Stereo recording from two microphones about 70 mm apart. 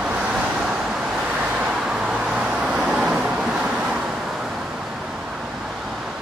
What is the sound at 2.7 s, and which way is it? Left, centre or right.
Vehicle, centre.